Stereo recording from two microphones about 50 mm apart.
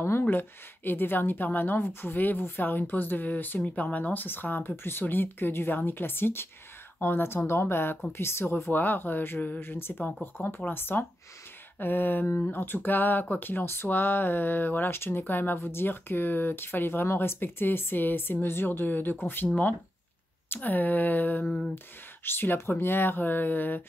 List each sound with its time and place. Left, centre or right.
0.2 s speech: left
8.7 s speech: left
21.5 s a sound: centre
21.7 s speech: left